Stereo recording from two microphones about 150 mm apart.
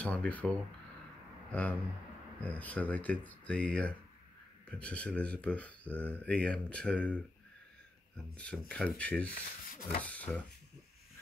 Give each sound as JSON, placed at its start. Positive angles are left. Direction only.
{"t": 0.0, "sound": "speech", "side_deg": 10}
{"t": 1.5, "sound": "speech", "side_deg": 10}
{"t": 8.4, "sound": "speech", "side_deg": 5}
{"t": 9.3, "sound": "speech", "side_deg": 70}
{"t": 10.0, "sound": "speech", "side_deg": 10}